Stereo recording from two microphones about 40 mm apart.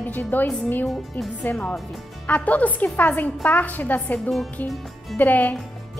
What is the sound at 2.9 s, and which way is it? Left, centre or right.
Music, left.